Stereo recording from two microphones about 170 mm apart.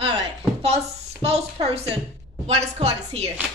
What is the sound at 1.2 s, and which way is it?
A woman's voice, 40° right (ahead or behind).